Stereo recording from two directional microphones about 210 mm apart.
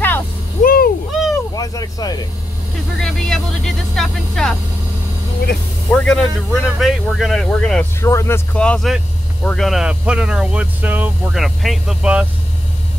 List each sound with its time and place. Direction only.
0.6 s a sound: 45° left (ahead or behind)
1.5 s speech: 15° left (ahead or behind)
3.0 s speech: centre (ahead or behind)
5.9 s speech: 5° left (ahead or behind)